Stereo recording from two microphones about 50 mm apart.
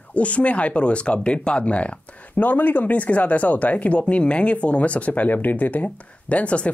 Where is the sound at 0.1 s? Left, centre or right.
Left.